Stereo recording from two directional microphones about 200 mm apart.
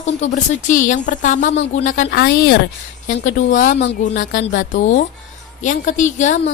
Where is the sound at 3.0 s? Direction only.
40° left (ahead or behind).